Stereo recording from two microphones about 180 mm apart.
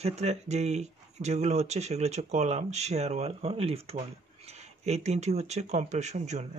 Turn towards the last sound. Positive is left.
turn(degrees=-40)  # may be behind; listen again after turning